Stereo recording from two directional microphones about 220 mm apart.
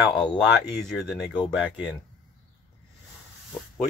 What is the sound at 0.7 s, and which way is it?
Speech, centre (ahead or behind).